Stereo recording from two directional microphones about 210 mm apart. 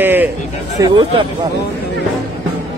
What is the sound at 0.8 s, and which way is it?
Speech, 20° right (ahead or behind).